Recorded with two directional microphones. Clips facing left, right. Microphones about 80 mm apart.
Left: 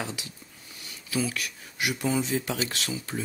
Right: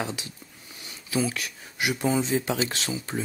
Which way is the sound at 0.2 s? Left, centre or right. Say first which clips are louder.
Right 2 dB; right.